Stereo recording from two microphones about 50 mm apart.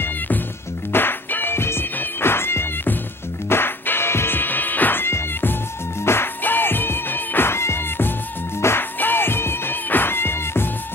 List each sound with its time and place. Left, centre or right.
0.9 s music: left
5.0 s music: left
6.4 s music: left
9.0 s music: left